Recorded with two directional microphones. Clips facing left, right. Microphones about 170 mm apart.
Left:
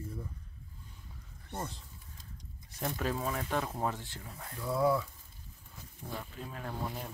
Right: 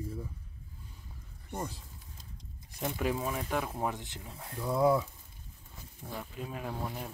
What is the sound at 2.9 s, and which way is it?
Speech, 15° right (ahead or behind).